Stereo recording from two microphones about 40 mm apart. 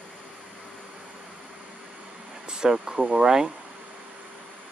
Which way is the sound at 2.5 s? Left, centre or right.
Centre.